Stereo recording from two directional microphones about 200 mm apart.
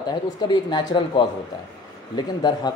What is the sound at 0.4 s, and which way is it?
Speech, 20° left (ahead or behind).